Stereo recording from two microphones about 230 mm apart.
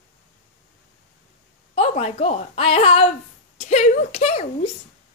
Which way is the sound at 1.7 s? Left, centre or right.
Left.